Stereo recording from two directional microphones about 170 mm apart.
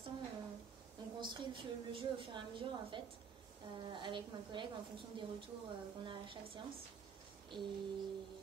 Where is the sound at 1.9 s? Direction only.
30° right (ahead or behind).